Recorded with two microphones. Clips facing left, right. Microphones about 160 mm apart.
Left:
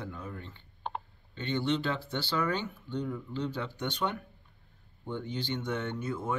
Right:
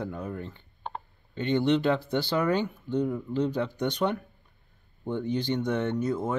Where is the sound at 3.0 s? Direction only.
35° right (ahead or behind).